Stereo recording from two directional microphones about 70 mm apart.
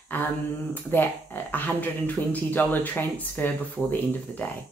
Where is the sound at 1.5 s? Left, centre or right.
Left.